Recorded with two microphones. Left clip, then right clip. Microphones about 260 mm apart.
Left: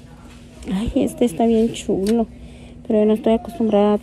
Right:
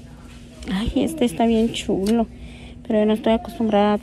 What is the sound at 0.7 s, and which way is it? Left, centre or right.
A woman's voice, centre.